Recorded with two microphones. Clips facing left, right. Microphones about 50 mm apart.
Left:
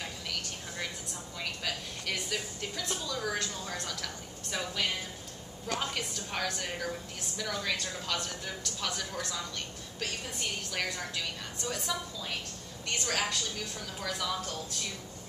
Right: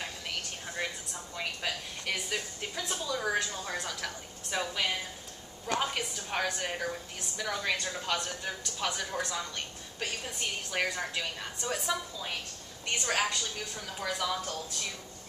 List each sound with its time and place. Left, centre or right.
1.3 s music: centre
2.1 s a sound: centre
5.7 s a woman's voice: centre